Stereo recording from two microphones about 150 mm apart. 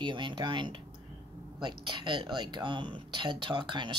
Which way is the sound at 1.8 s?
30° right (ahead or behind).